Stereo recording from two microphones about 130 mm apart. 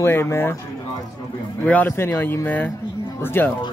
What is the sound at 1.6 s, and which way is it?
Speech, 15° left (ahead or behind).